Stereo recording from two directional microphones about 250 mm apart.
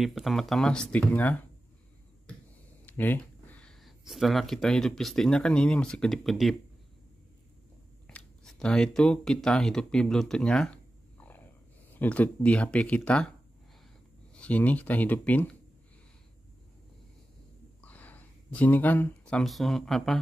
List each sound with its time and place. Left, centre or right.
0.0 s speech: centre
2.9 s speech: centre
8.1 s speech: centre
11.1 s a sound: centre
12.0 s speech: centre
14.4 s speech: centre
17.8 s speech: centre